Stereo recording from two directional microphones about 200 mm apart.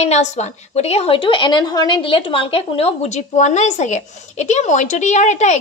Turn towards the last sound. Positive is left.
turn(degrees=35)  # may be behind; listen again after turning